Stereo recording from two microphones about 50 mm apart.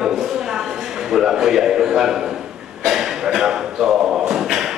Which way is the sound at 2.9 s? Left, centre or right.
Centre.